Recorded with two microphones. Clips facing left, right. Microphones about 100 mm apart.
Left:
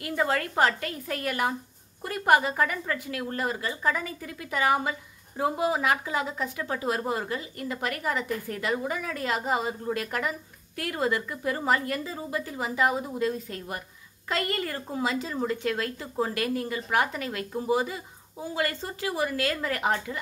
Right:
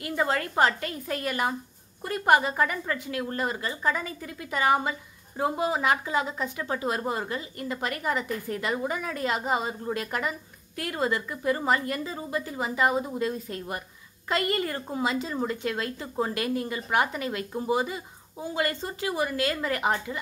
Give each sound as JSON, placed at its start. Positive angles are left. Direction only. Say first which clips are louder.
{"t": 0.0, "sound": "a woman's voice", "louder": "even", "side_deg": -5}